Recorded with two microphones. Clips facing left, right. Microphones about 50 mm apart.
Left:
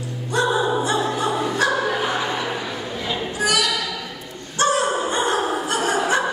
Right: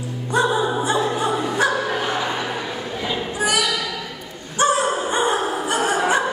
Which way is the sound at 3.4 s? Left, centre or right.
Centre.